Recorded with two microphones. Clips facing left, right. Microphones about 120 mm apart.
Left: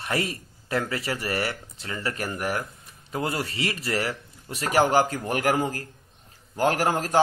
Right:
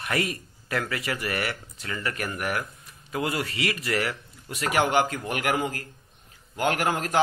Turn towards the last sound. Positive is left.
turn(degrees=35)  # may be behind; listen again after turning